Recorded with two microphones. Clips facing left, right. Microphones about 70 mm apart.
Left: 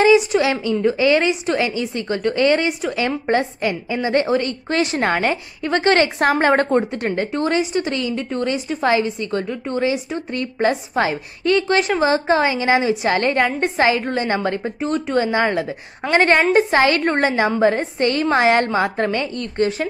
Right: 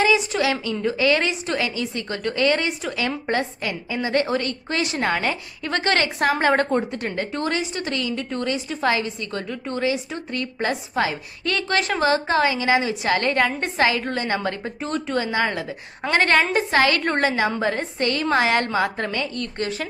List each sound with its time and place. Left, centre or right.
0.1 s a woman's voice: left
4.6 s speech: left
5.6 s a woman's voice: left
11.4 s a woman's voice: centre
15.1 s a woman's voice: left